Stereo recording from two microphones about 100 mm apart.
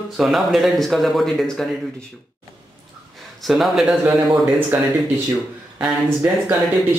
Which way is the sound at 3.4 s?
Centre (ahead or behind).